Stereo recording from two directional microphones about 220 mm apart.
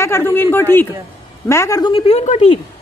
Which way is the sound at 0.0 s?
10° left (ahead or behind).